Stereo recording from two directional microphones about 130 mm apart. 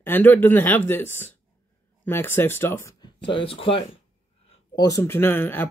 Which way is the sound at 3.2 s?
45° left (ahead or behind).